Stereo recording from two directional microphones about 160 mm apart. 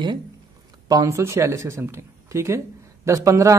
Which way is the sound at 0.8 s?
20° right (ahead or behind).